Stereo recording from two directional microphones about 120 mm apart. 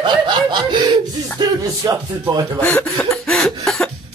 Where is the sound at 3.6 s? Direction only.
Centre (ahead or behind).